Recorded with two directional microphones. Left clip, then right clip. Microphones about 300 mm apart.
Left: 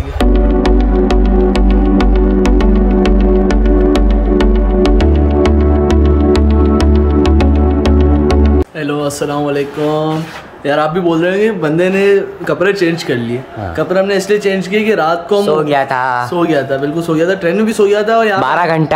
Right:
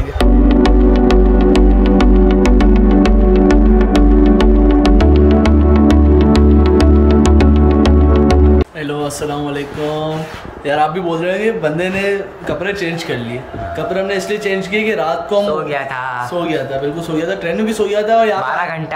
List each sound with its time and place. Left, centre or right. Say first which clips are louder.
0.2 s music: even; centre
10.7 s a man's voice: left 3 dB; centre
13.9 s speech: left 7 dB; centre
15.4 s speech: left 5 dB; left
17.1 s speech: left 7 dB; centre
18.6 s speech: left 7 dB; left